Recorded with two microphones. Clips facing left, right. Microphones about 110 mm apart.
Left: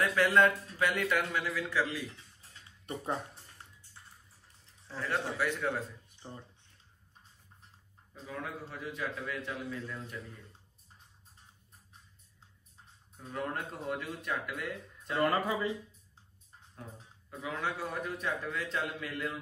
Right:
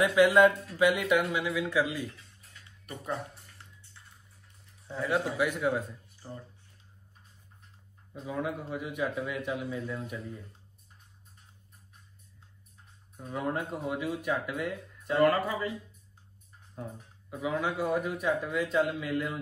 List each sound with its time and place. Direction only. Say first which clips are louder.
0.0 s a man's voice: right 5 dB; 10° right (ahead or behind)
2.1 s a sound: right 1 dB; 25° left (ahead or behind)
4.9 s a man's voice: right 5 dB; 5° right (ahead or behind)
6.0 s a sound: right 3 dB; 25° left (ahead or behind)
8.1 s a man's voice: right 7 dB; 10° right (ahead or behind)
13.2 s a man's voice: right 4 dB; 5° right (ahead or behind)
15.2 s speech: right 3 dB; 20° left (ahead or behind)
17.3 s a man's voice: right 5 dB; 10° right (ahead or behind)